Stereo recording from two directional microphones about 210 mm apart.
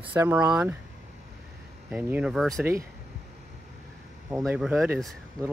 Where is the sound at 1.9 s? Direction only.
5° right (ahead or behind).